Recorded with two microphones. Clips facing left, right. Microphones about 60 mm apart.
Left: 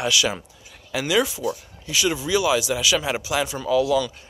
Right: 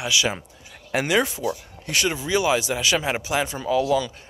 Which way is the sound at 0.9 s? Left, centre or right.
Right.